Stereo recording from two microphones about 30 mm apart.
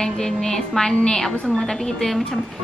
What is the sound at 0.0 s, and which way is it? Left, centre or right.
A woman's voice, centre.